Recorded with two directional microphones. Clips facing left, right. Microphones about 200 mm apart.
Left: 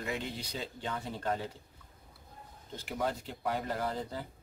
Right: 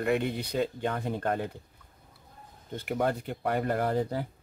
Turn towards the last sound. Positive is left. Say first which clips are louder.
# right 8 dB
turn(degrees=-60)  # may be behind; listen again after turning